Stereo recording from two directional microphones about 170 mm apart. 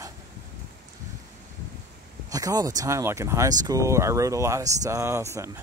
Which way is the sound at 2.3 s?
20° right (ahead or behind).